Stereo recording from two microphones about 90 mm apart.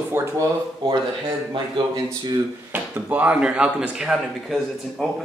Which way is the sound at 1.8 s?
70° right (ahead or behind).